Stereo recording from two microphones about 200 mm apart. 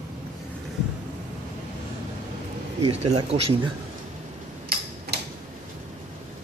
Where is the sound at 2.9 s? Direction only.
30° right (ahead or behind).